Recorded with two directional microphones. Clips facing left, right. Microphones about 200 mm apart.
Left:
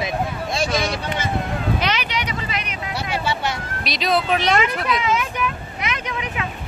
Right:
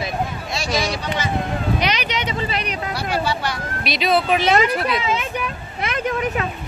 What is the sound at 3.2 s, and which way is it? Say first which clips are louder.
Speech: right 1 dB; 25° left (ahead or behind).